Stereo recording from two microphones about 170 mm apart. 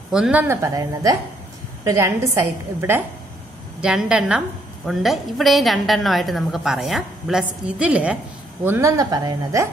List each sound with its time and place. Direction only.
0.1 s a woman's voice: 5° right (ahead or behind)
3.8 s a woman's voice: 5° right (ahead or behind)